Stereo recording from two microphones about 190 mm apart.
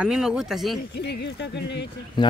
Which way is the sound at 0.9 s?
60° left (ahead or behind).